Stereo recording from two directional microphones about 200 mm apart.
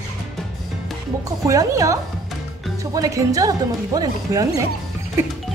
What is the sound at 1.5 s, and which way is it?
Speech, 15° right (ahead or behind).